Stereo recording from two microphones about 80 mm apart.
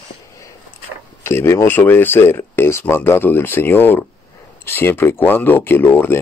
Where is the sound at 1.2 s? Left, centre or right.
Left.